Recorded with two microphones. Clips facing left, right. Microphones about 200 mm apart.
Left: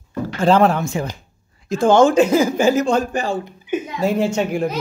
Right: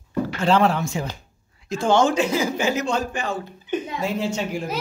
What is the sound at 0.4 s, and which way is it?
Speech, 50° left (ahead or behind).